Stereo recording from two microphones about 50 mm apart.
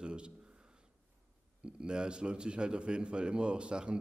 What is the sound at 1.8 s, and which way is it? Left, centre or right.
A man's voice, centre.